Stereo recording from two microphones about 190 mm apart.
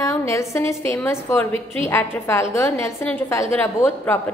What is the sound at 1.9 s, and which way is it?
A woman's voice, 10° left (ahead or behind).